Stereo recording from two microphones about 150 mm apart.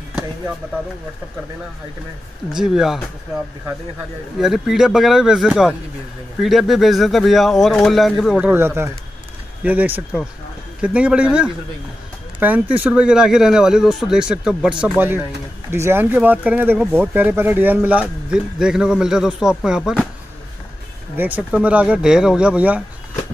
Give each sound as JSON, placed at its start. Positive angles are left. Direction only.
{"t": 2.5, "sound": "speech", "side_deg": -5}
{"t": 4.4, "sound": "speech", "side_deg": -5}
{"t": 21.2, "sound": "speech", "side_deg": -10}